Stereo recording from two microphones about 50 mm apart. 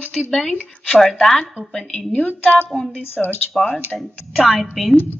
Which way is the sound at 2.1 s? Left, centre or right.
Left.